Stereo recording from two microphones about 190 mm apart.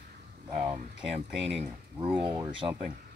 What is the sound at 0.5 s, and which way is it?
Speech, 35° right (ahead or behind).